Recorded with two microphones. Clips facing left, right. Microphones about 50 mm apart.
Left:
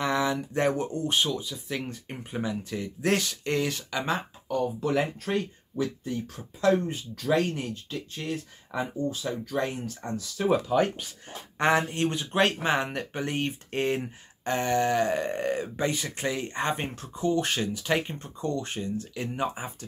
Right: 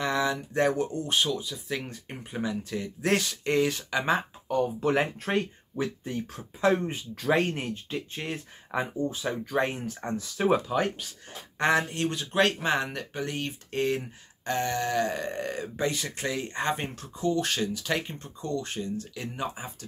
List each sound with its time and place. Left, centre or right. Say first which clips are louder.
0.0 s speech: left 1 dB; centre
4.5 s speech: right 1 dB; right
6.0 s speech: left 1 dB; right
10.7 s speech: left 4 dB; centre
11.5 s speech: left 1 dB; centre